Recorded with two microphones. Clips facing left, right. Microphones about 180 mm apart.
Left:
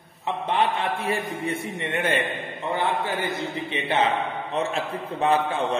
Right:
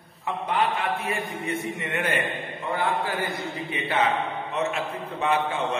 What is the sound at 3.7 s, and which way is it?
A man's voice, 25° left (ahead or behind).